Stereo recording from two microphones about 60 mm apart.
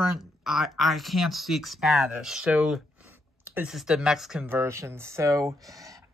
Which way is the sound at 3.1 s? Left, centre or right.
Right.